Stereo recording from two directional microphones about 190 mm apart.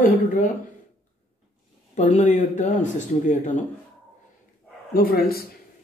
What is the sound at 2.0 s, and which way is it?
Speech, 40° left (ahead or behind).